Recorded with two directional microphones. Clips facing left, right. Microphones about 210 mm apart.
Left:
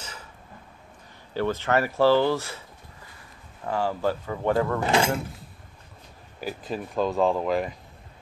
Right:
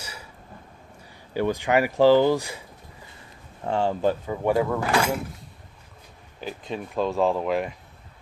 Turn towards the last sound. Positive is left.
turn(degrees=0)  # may be behind; listen again after turning